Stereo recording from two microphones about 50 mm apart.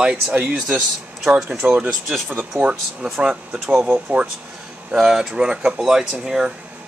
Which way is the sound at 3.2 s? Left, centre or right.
Centre.